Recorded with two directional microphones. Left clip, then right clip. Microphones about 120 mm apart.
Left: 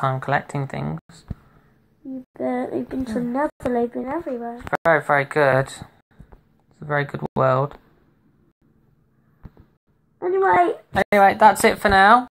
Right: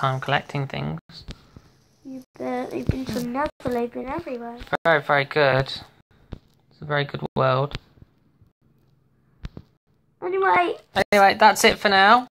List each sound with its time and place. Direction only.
0.0 s speech: 5° left (ahead or behind)
2.3 s speech: 40° left (ahead or behind)
4.6 s speech: 5° left (ahead or behind)
10.1 s a child's voice: 40° left (ahead or behind)
11.0 s speech: 5° left (ahead or behind)